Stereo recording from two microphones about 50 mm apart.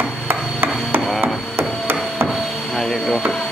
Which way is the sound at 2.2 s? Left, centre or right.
Centre.